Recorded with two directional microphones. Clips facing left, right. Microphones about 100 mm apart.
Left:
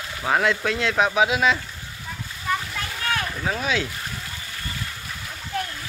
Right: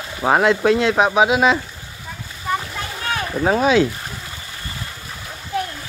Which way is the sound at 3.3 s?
35° right (ahead or behind).